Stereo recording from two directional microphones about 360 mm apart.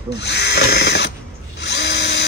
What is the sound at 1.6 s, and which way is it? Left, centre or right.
Drill, left.